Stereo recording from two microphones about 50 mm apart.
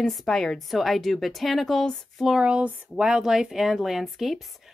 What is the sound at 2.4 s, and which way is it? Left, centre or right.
Speech, right.